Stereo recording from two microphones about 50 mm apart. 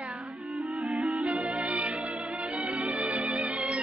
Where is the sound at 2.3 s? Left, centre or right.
Centre.